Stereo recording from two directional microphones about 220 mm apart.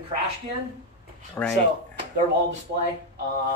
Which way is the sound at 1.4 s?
10° left (ahead or behind).